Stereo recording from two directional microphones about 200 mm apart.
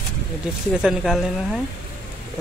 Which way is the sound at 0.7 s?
5° right (ahead or behind).